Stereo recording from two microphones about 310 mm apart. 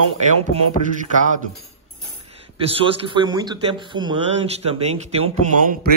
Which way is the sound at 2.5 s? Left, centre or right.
Centre.